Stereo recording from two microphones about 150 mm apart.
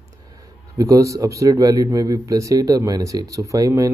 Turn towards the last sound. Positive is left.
turn(degrees=-20)  # may be behind; listen again after turning